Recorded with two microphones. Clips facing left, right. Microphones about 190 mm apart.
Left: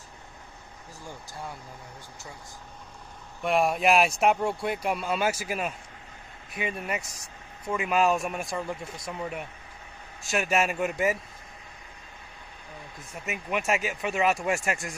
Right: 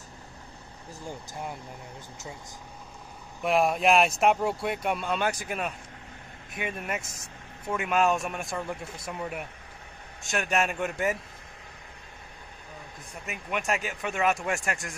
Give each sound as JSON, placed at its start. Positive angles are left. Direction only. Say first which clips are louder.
{"t": 1.0, "sound": "speech", "louder": "right 3 dB", "side_deg": -20}
{"t": 3.4, "sound": "speech", "louder": "even", "side_deg": 0}
{"t": 13.2, "sound": "speech", "louder": "left 3 dB", "side_deg": 5}